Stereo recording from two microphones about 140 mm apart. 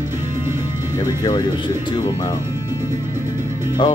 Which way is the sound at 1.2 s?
30° left (ahead or behind).